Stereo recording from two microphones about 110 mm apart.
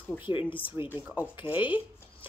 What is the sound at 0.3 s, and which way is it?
Speech, 50° left (ahead or behind).